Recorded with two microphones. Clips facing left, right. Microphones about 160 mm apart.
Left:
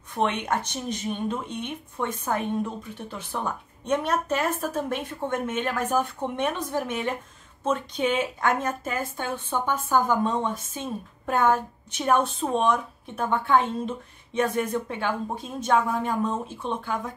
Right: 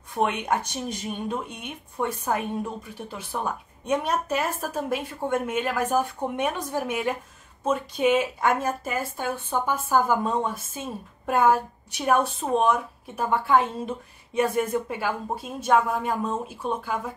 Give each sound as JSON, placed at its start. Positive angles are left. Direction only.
{"t": 0.1, "sound": "speech", "side_deg": -10}